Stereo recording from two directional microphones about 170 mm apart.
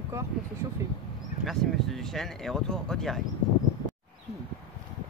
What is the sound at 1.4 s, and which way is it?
Speech, centre (ahead or behind).